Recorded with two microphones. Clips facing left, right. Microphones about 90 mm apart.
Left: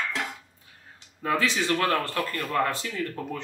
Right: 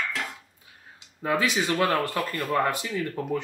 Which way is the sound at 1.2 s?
20° right (ahead or behind).